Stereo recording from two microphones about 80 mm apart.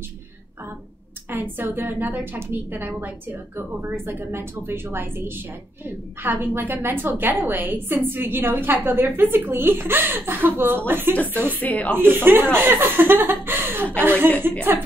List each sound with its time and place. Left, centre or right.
1.3 s a woman's voice: right
11.6 s speech: centre
12.0 s a woman's voice: right